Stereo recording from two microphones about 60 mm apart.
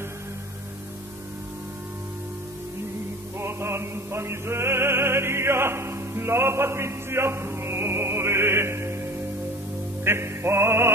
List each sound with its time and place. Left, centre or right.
3.3 s music: right
10.0 s music: right